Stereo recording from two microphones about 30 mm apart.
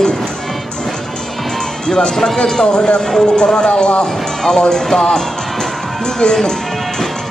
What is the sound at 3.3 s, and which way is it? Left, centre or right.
Speech, left.